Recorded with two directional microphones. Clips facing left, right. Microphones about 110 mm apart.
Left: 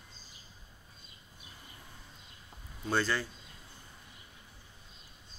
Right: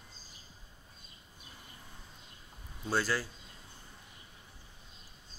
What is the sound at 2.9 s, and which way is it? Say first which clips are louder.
Speech: left 1 dB; 5° right (ahead or behind).